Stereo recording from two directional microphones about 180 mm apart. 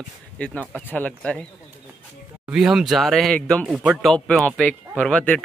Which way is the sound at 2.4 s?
5° right (ahead or behind).